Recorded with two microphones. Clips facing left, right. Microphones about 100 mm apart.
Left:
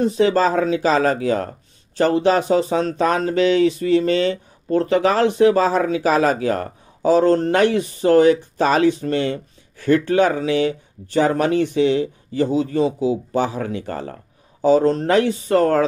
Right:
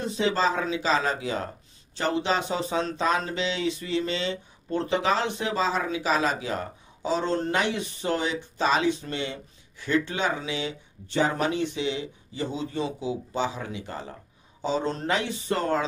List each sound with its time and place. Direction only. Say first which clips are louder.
0.0 s speech: left 8 dB; 50° left (ahead or behind)
13.4 s speech: left 8 dB; 55° left (ahead or behind)
14.9 s speech: left 11 dB; 50° left (ahead or behind)